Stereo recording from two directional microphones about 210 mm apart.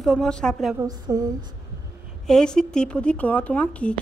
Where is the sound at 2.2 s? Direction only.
5° left (ahead or behind).